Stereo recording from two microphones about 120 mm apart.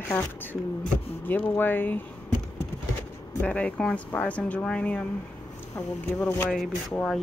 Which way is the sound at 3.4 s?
10° left (ahead or behind).